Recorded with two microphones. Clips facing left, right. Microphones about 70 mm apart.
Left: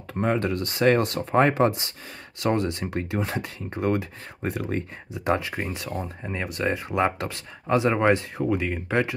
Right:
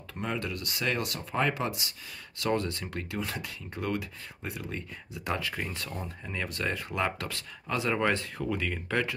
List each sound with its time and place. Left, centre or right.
0.1 s speech: left
2.4 s speech: left
5.1 s speech: left